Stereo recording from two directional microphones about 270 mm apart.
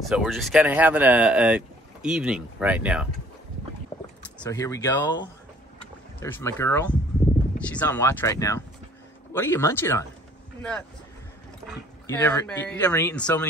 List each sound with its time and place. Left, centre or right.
0.0 s speech: centre
4.4 s speech: centre
11.6 s speech: centre